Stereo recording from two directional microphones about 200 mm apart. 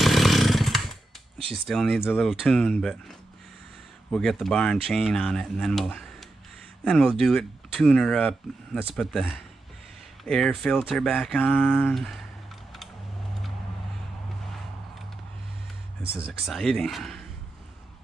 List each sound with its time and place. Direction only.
0.0 s chainsaw: centre (ahead or behind)
1.5 s speech: centre (ahead or behind)
4.1 s speech: centre (ahead or behind)
16.1 s speech: 5° right (ahead or behind)